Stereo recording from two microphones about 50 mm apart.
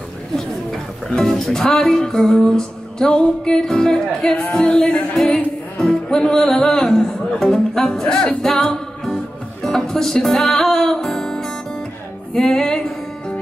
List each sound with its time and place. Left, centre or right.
1.1 s music: centre
4.5 s speech: centre
5.1 s music: centre